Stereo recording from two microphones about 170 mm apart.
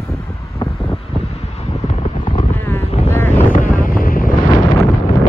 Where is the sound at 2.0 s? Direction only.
25° left (ahead or behind).